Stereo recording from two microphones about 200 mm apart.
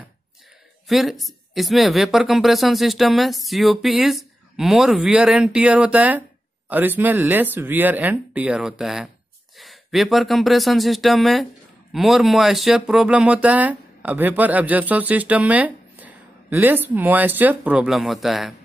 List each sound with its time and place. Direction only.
0.8 s speech: centre (ahead or behind)